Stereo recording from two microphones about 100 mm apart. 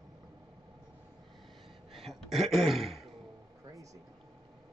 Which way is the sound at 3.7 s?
35° right (ahead or behind).